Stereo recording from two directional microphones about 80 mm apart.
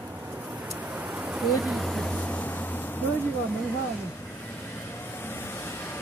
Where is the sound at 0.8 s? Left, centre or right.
Centre; by 3.0 s left.